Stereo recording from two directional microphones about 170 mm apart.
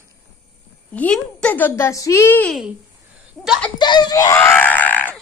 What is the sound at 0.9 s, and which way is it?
A child's voice, 5° left (ahead or behind).